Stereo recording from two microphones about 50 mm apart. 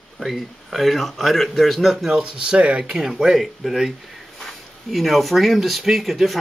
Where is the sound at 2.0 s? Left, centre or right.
Centre.